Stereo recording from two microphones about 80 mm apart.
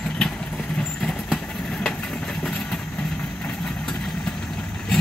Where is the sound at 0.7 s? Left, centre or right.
Centre.